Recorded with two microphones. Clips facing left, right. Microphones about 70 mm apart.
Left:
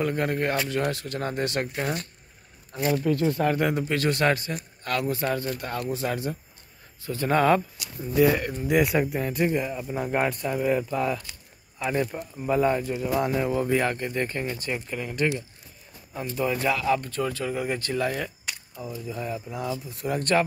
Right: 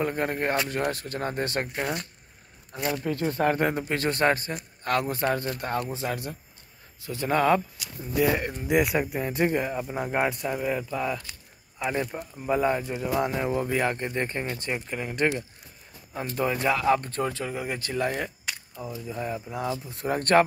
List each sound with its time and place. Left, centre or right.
0.0 s speech: centre
1.8 s speech: centre
2.9 s speech: right
6.0 s speech: centre
9.4 s speech: right
9.8 s speech: centre
10.6 s speech: centre
11.8 s speech: centre; by 20.4 s right